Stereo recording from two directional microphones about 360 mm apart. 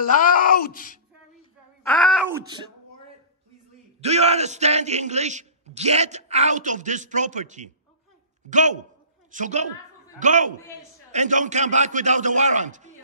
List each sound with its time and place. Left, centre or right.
0.1 s groan: left
1.9 s groan: centre
2.2 s speech: centre
4.0 s speech: centre